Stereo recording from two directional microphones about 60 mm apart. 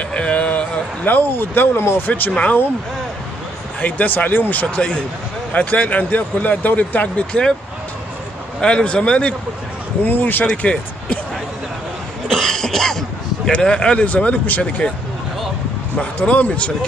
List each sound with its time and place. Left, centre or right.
0.1 s a sound: centre; by 1.9 s left
2.0 s speech: left
3.8 s speech: left
8.5 s speech: centre
10.0 s speech: left
10.4 s speech: centre
12.3 s cough: centre
13.5 s speech: centre
16.0 s speech: left